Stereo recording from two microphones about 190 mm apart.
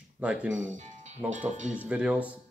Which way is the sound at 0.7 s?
40° right (ahead or behind).